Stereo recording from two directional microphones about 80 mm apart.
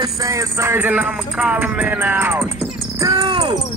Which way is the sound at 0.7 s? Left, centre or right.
Right.